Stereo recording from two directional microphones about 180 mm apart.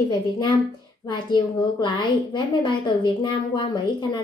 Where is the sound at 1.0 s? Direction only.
25° left (ahead or behind).